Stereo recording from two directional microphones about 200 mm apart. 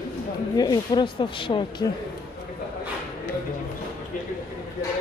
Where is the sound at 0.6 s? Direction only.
20° left (ahead or behind).